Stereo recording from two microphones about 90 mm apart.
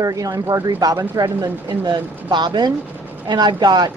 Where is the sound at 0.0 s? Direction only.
45° right (ahead or behind).